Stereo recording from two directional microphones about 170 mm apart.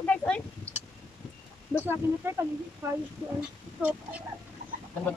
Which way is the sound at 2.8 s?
15° right (ahead or behind).